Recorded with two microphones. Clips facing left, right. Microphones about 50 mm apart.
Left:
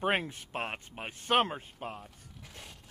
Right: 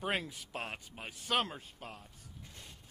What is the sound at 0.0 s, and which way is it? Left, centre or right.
Speech, left.